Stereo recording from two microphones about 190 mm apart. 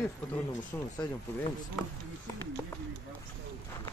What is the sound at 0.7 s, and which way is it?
Speech, 15° left (ahead or behind).